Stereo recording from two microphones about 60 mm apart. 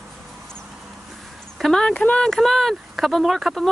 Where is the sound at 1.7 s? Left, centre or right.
Centre.